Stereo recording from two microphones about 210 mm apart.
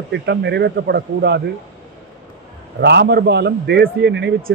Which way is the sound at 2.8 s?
50° right (ahead or behind).